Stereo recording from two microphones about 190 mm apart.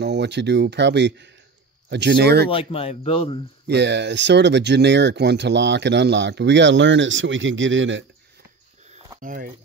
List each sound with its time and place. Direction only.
0.0 s speech: 60° right (ahead or behind)
2.5 s speech: 30° left (ahead or behind)
3.6 s speech: 65° right (ahead or behind); by 8.0 s 80° right
9.2 s speech: 45° right (ahead or behind)